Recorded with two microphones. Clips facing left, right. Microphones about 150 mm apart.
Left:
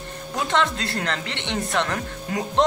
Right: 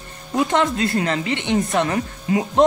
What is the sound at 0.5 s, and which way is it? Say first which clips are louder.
Speech: right 1 dB; 20° right (ahead or behind).